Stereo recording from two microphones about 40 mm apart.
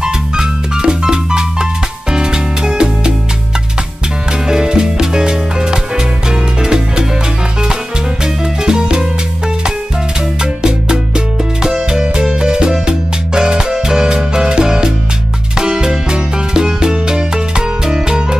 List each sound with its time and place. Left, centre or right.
0.0 s music: centre
4.5 s music: centre
8.6 s music: centre
10.4 s music: centre